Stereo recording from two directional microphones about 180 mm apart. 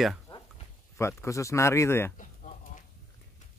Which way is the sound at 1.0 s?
15° left (ahead or behind).